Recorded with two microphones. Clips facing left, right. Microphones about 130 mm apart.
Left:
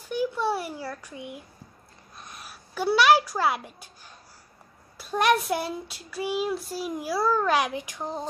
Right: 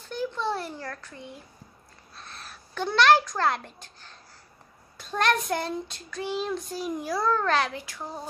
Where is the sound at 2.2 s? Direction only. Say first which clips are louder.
Even; 15° left (ahead or behind).